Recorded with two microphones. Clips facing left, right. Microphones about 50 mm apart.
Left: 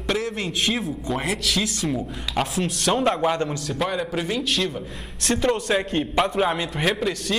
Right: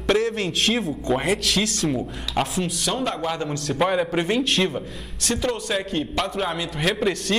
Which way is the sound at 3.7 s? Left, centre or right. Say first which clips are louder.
Right 5 dB; centre.